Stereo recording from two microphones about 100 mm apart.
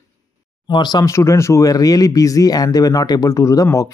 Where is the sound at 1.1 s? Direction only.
30° left (ahead or behind).